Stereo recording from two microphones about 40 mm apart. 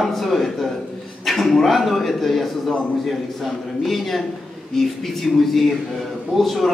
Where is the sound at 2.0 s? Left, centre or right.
Centre.